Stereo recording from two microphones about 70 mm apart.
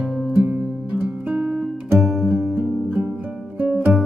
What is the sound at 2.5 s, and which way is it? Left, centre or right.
Music, right.